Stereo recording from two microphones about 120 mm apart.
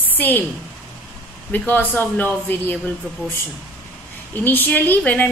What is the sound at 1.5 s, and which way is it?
A woman's voice, 15° left (ahead or behind).